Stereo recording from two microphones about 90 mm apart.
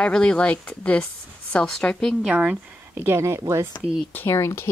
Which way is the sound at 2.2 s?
15° right (ahead or behind).